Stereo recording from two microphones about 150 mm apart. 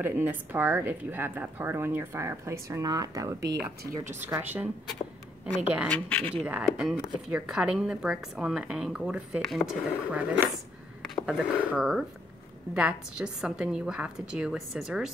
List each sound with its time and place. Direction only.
0.0 s speech: 10° right (ahead or behind)
5.9 s speech: 10° left (ahead or behind)
6.3 s speech: 10° right (ahead or behind)
10.1 s speech: 10° right (ahead or behind)